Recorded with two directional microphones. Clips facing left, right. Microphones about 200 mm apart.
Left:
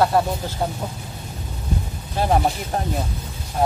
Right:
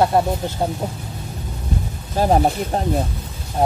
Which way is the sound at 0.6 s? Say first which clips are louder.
Right 2 dB; 25° right (ahead or behind).